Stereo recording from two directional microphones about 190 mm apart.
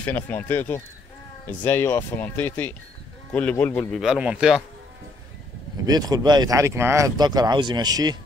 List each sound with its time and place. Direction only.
0.0 s speech: 10° left (ahead or behind)
4.0 s a man's voice: 5° right (ahead or behind)
5.9 s speech: 20° right (ahead or behind)